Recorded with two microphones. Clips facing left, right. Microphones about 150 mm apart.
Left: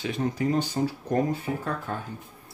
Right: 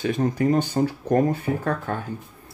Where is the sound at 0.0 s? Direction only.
50° right (ahead or behind).